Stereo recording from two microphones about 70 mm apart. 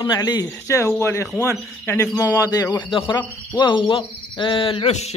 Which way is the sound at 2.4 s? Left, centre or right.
Left.